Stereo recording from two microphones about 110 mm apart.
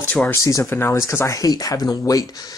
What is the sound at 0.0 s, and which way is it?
Speech, 15° left (ahead or behind).